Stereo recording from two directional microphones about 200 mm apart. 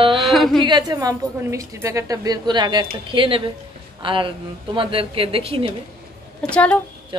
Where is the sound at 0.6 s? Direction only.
20° right (ahead or behind).